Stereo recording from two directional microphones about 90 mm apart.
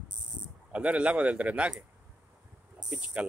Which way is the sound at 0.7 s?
15° right (ahead or behind).